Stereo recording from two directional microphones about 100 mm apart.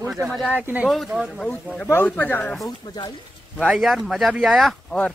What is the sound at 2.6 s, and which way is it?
Speech, 40° left (ahead or behind).